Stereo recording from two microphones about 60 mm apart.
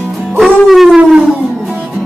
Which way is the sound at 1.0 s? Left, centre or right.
Centre.